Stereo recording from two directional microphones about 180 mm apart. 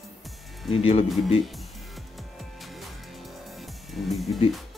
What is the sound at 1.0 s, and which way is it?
Speech, centre (ahead or behind).